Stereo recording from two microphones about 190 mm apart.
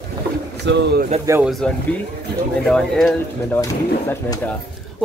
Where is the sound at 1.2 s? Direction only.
15° right (ahead or behind).